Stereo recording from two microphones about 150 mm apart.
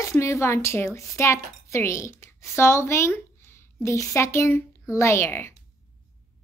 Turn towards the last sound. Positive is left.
turn(degrees=15)  # may be behind; listen again after turning